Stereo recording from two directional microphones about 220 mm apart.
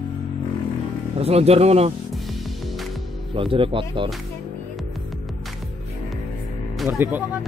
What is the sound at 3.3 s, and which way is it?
Speech, 25° right (ahead or behind).